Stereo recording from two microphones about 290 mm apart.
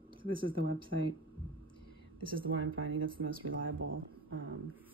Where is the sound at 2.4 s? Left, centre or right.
Right.